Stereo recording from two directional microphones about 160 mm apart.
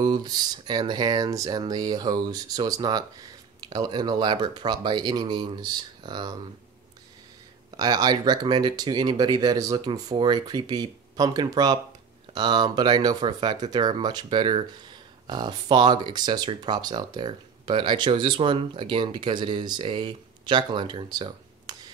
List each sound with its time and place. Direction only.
0.0 s speech: 25° right (ahead or behind)
7.7 s speech: 25° right (ahead or behind)